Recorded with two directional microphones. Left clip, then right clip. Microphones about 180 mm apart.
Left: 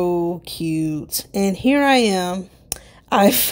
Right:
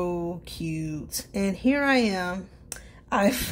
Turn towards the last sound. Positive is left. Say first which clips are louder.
# left 8 dB
turn(degrees=45)  # may be behind; listen again after turning